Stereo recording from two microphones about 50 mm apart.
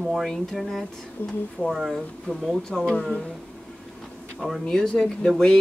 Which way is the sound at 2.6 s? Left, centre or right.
Centre.